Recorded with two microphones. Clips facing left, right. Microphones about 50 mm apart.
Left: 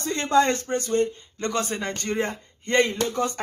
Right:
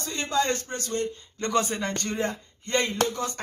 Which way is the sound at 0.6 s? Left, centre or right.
Left.